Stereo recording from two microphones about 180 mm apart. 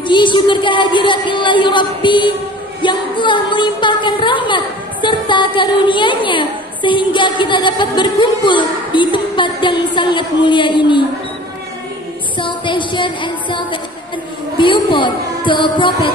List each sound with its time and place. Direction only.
0.0 s speech: 25° left (ahead or behind)
2.8 s a sound: 25° left (ahead or behind)
4.5 s a woman's voice: 25° left (ahead or behind)
12.4 s speech: 25° left (ahead or behind)